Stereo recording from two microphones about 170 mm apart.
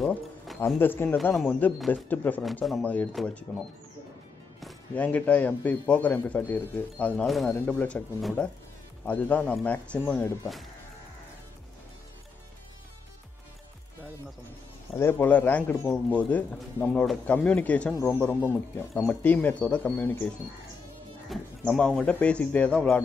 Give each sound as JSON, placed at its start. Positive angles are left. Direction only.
{"t": 0.0, "sound": "music", "side_deg": 0}
{"t": 0.7, "sound": "a man's voice", "side_deg": 10}
{"t": 1.1, "sound": "a man's voice", "side_deg": 0}
{"t": 4.6, "sound": "a man's voice", "side_deg": 5}
{"t": 15.0, "sound": "a man's voice", "side_deg": 15}
{"t": 21.3, "sound": "speech", "side_deg": 5}